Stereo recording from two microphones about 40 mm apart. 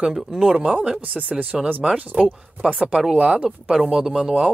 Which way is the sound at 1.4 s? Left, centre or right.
Right.